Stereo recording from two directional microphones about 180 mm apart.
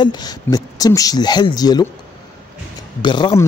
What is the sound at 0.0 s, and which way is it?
Speech, 20° left (ahead or behind).